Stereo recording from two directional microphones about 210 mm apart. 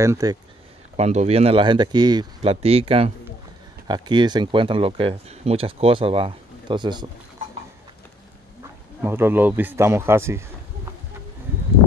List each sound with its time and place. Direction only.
0.0 s speech: 15° right (ahead or behind)
0.9 s speech: 30° right (ahead or behind)
9.0 s speech: 10° right (ahead or behind)